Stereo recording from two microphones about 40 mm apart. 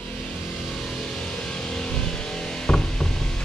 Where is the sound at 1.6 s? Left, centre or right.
Centre.